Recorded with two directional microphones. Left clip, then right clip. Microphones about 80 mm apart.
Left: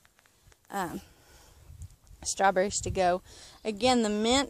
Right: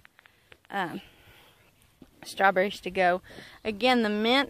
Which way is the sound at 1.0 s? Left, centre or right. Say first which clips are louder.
Right 4 dB; centre.